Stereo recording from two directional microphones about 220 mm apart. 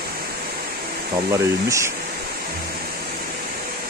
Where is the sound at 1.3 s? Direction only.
15° right (ahead or behind).